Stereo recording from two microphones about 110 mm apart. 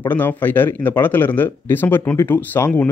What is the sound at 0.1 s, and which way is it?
Speech, 15° left (ahead or behind).